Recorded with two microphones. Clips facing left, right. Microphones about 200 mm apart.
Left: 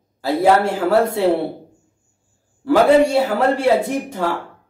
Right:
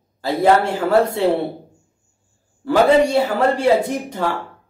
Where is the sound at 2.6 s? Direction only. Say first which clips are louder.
Left 1 dB; 5° left (ahead or behind).